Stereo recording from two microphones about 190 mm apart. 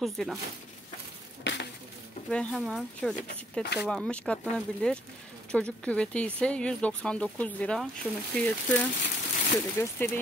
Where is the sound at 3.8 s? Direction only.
5° left (ahead or behind).